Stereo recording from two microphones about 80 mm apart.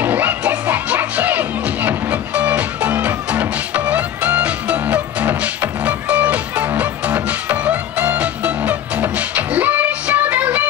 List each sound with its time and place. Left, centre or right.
0.0 s music: right